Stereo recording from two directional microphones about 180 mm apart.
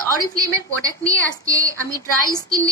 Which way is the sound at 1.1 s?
20° right (ahead or behind).